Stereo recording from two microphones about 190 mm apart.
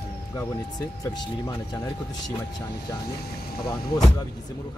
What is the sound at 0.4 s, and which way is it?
Speech, 20° left (ahead or behind).